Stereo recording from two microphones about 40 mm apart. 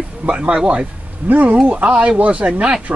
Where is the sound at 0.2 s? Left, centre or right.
Right.